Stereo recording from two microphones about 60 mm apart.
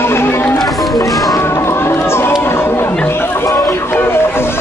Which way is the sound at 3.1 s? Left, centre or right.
Left.